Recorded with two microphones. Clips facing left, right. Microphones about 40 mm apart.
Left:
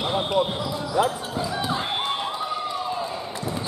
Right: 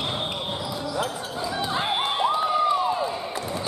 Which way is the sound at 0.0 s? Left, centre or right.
Centre.